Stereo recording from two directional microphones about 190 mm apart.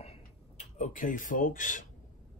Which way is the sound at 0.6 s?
40° left (ahead or behind).